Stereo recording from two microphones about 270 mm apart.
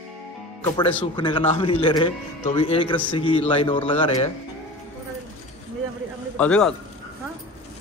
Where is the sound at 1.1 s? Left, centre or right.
Centre.